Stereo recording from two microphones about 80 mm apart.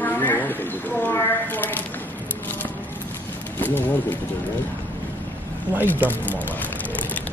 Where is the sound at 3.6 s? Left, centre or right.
Left.